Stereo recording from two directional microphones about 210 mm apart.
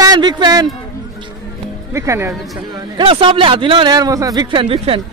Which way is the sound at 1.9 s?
15° right (ahead or behind).